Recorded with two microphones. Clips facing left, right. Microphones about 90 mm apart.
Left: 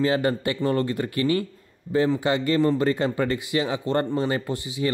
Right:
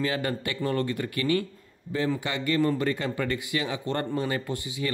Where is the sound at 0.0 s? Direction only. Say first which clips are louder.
Left 6 dB; 30° left (ahead or behind).